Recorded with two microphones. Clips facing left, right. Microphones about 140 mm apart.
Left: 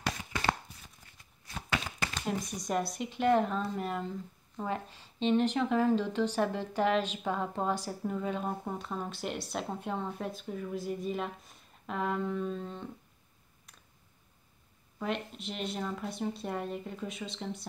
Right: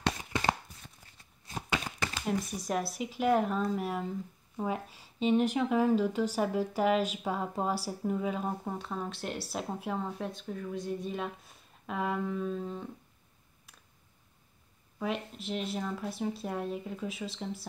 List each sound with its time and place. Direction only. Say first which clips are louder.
0.0 s chopping: right 2 dB; 20° right (ahead or behind)
2.2 s speech: right 2 dB; 5° right (ahead or behind)
15.0 s speech: right 1 dB; centre (ahead or behind)